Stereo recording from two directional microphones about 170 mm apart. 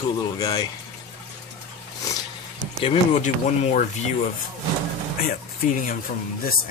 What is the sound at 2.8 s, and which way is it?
Speech, 40° left (ahead or behind).